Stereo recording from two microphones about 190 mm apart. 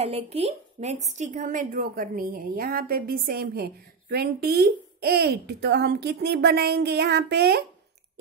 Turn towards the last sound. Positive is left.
turn(degrees=-60)  # may be behind; listen again after turning